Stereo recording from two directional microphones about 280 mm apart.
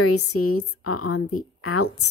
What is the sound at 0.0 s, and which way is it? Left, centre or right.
A woman's voice, left.